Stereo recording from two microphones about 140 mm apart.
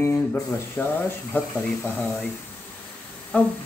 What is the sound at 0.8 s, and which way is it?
Speech, 15° left (ahead or behind).